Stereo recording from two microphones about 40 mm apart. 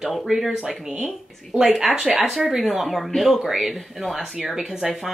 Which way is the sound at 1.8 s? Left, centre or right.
Centre.